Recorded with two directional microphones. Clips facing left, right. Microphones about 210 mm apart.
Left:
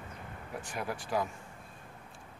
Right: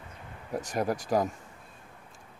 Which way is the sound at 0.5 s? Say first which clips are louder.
Right 9 dB; 40° right (ahead or behind).